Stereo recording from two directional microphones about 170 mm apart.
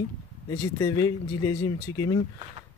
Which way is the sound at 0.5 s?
20° left (ahead or behind).